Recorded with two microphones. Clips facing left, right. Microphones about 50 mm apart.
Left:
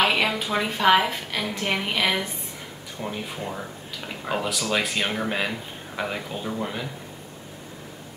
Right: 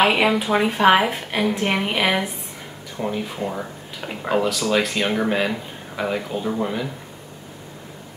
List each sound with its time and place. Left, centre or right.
0.0 s a woman's voice: centre
4.5 s speech: centre